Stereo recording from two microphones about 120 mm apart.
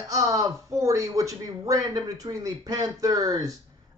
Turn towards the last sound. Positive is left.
turn(degrees=-30)  # may be behind; listen again after turning